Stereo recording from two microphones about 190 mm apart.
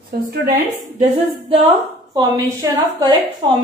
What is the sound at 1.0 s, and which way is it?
A woman's voice, 30° right (ahead or behind).